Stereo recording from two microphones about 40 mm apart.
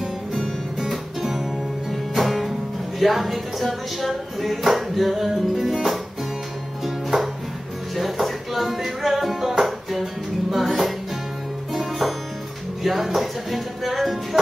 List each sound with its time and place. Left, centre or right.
0.7 s music: centre
3.0 s speech: centre
6.8 s music: centre